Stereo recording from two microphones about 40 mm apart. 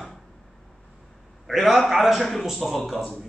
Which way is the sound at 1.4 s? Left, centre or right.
Centre.